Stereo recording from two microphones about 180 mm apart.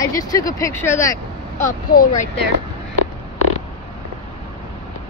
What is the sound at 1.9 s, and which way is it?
Speech, 55° left (ahead or behind).